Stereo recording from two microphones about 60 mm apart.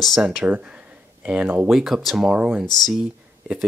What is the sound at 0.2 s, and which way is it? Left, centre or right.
Speech, centre.